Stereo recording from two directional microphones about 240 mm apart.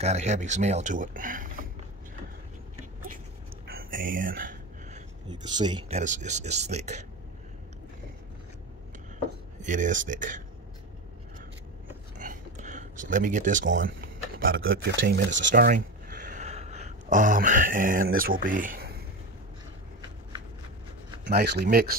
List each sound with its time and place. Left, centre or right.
0.0 s speech: right
3.6 s a sound: right
5.3 s speech: centre
9.6 s speech: right
12.2 s a sound: right
14.7 s speech: right
21.2 s speech: right